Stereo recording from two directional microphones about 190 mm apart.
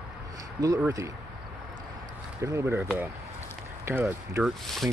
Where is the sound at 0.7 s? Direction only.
10° right (ahead or behind).